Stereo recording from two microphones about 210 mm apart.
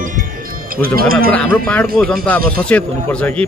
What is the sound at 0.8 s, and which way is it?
Speech, 45° right (ahead or behind).